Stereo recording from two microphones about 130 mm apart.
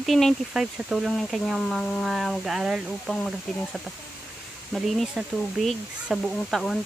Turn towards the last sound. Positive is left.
turn(degrees=0)  # may be behind; listen again after turning